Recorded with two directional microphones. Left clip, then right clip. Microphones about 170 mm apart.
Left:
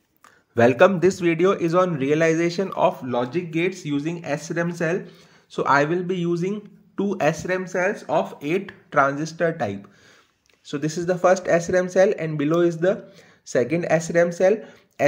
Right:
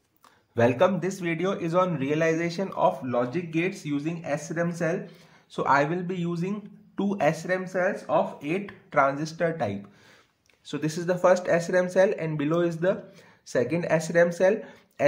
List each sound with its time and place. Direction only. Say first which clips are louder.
0.6 s a man's voice: left 6 dB; 25° left (ahead or behind)
5.0 s speech: left 1 dB; 15° left (ahead or behind)
8.1 s speech: left 3 dB; 30° left (ahead or behind); by 15.0 s 10° left (ahead or behind)